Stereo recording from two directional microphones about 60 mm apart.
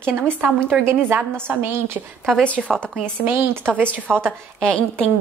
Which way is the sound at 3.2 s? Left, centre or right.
Right.